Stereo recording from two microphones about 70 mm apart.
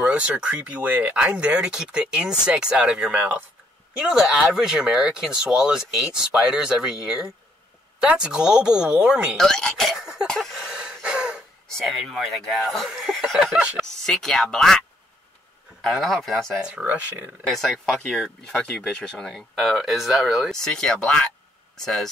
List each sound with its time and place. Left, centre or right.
0.0 s speech: centre
9.4 s speech: centre
10.3 s a sound: centre
10.6 s gasp: centre
12.0 s speech: centre
16.5 s speech: centre
17.5 s speech: centre